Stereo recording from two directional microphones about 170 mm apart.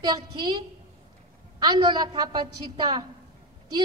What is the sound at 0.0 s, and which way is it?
Speech, 25° right (ahead or behind).